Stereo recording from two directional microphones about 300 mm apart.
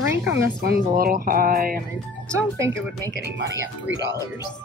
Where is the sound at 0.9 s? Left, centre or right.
Right.